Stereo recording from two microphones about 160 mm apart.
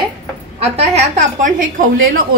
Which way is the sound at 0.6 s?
45° right (ahead or behind).